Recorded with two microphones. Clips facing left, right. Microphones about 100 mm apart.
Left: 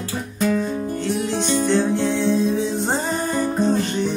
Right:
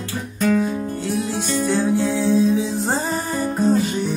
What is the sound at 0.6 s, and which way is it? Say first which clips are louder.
Music: right 1 dB; 5° right (ahead or behind).